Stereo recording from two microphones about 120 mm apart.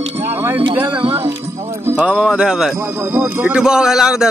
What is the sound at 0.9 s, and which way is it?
Music, 55° right (ahead or behind).